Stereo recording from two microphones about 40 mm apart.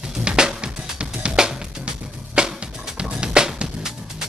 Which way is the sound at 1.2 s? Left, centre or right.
Centre.